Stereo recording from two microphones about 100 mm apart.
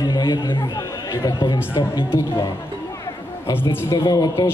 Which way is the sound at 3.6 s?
45° left (ahead or behind).